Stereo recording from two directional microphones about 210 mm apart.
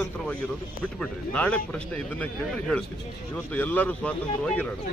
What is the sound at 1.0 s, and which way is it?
Speech, 5° left (ahead or behind).